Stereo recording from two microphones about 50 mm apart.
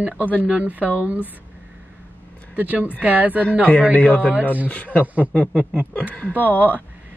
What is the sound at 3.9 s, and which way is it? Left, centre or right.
Speech, left.